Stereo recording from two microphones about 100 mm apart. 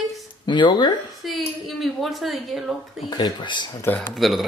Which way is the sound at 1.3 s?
Centre (ahead or behind).